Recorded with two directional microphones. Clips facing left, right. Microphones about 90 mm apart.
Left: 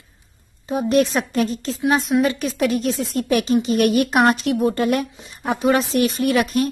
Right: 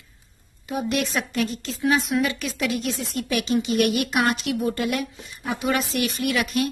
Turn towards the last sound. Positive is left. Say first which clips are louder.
# left 5 dB
turn(degrees=40)  # may be behind; listen again after turning